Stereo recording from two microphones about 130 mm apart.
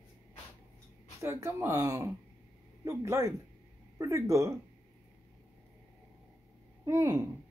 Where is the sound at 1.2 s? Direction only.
20° right (ahead or behind).